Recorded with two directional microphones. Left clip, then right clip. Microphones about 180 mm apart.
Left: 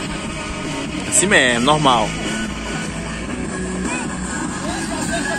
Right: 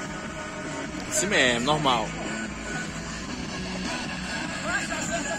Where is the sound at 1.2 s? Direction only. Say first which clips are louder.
Left 8 dB; centre (ahead or behind).